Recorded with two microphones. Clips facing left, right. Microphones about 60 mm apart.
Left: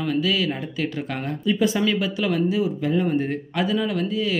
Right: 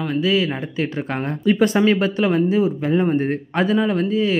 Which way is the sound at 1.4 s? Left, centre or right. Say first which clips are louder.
Right 5 dB; right.